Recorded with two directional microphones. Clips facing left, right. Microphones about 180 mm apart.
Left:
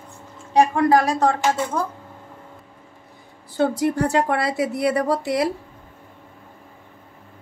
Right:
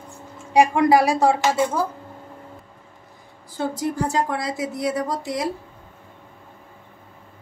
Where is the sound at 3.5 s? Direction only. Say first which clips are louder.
Left 5 dB; 65° left (ahead or behind).